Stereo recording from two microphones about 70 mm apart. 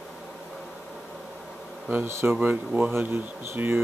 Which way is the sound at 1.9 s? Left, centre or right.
Right.